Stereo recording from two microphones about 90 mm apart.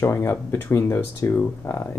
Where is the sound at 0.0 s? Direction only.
30° left (ahead or behind).